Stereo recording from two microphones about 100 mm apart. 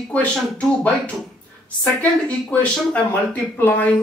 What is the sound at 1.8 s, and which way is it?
Speech, 15° left (ahead or behind).